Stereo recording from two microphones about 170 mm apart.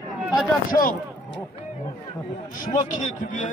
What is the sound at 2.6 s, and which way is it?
Speech, 50° left (ahead or behind).